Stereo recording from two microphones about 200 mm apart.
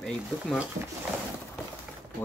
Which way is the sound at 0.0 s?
Centre (ahead or behind).